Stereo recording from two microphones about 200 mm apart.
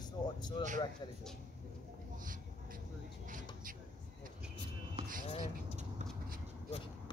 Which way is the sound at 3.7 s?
40° right (ahead or behind).